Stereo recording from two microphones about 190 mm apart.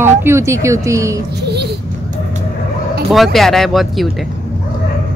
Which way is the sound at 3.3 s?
Centre (ahead or behind).